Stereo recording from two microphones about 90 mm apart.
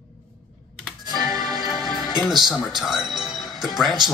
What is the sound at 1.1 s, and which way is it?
Music, 45° right (ahead or behind).